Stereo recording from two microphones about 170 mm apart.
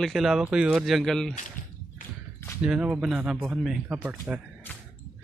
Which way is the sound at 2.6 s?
5° right (ahead or behind).